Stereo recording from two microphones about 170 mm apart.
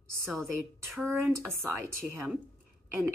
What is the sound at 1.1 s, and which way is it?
A woman's voice, 15° right (ahead or behind).